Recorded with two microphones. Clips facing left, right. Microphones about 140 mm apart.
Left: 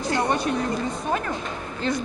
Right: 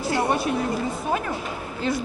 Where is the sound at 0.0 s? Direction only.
5° right (ahead or behind).